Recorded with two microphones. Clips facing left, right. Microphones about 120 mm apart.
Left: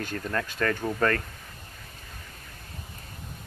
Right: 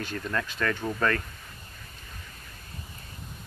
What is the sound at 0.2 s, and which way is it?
Speech, 40° left (ahead or behind).